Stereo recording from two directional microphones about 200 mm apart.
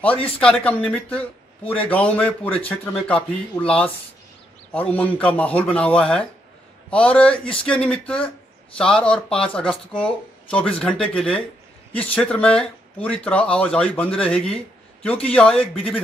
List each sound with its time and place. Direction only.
0.4 s a man's voice: 5° left (ahead or behind)
15.7 s speech: 30° left (ahead or behind)